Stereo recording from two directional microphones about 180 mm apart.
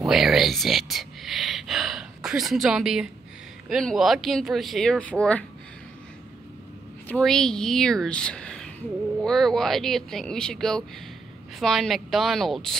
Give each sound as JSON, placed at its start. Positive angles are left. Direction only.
{"t": 0.0, "sound": "a sound", "side_deg": 0}
{"t": 3.6, "sound": "speech", "side_deg": 0}
{"t": 7.1, "sound": "speech", "side_deg": 5}